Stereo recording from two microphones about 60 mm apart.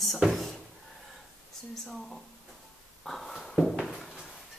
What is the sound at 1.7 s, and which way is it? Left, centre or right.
Speech, centre.